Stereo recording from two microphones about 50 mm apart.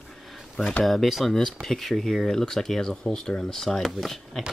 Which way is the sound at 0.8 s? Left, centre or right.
Centre.